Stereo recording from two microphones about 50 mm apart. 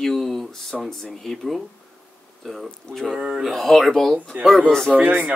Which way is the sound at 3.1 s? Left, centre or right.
Right.